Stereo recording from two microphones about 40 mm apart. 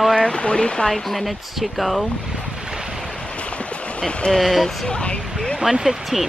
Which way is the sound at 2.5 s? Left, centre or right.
Centre.